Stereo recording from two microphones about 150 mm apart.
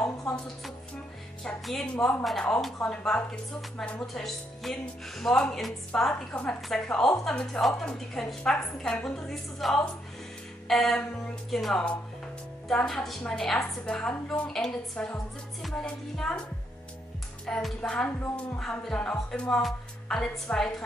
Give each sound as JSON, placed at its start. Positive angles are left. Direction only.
{"t": 0.0, "sound": "a sound", "side_deg": 15}
{"t": 1.7, "sound": "a woman's voice", "side_deg": 5}
{"t": 17.5, "sound": "a woman's voice", "side_deg": 5}